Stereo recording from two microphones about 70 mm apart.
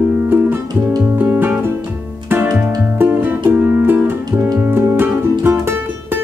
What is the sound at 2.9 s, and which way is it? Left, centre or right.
Music, right.